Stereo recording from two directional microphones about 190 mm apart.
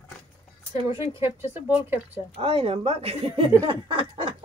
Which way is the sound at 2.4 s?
30° right (ahead or behind).